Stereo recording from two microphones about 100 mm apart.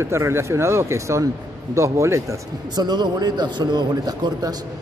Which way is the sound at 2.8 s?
45° right (ahead or behind).